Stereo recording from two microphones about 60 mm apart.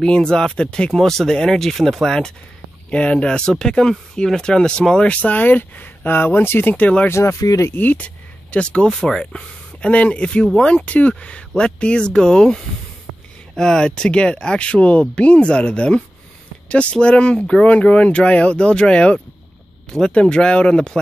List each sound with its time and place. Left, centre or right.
0.0 s speech: centre
2.9 s speech: centre
5.1 s speech: left
6.7 s speech: left
7.1 s speech: left
7.4 s speech: left
7.7 s speech: left